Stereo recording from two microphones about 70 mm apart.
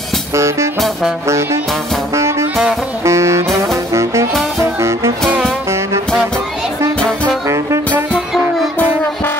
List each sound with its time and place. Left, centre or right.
0.3 s music: right
3.1 s saxophone: right
3.7 s brass instrument: right
4.6 s music: right
7.4 s saxophone: right